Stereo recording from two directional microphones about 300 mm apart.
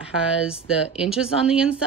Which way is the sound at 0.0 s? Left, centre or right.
Centre.